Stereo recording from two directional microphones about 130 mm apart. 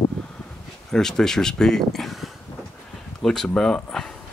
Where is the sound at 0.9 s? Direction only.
5° left (ahead or behind).